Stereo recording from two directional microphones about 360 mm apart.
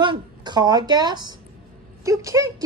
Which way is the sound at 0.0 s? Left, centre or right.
Centre.